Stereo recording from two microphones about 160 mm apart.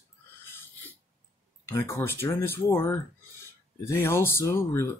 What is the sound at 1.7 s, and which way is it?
Speech, 15° left (ahead or behind).